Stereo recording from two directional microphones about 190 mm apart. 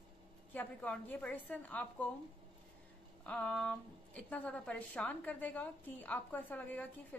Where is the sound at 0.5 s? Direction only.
10° left (ahead or behind).